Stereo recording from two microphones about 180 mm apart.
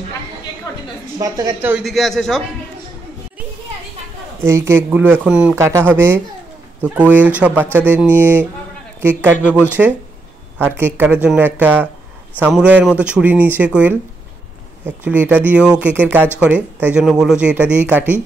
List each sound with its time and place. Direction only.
0.7 s a sound: 20° left (ahead or behind)
1.1 s a woman's voice: 20° right (ahead or behind)
1.9 s a man's voice: centre (ahead or behind)
4.4 s speech: 15° right (ahead or behind)
9.4 s speech: 10° left (ahead or behind)
10.6 s speech: 10° right (ahead or behind)
15.0 s speech: 10° right (ahead or behind)